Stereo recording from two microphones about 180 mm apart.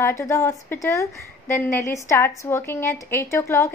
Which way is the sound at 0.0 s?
15° left (ahead or behind).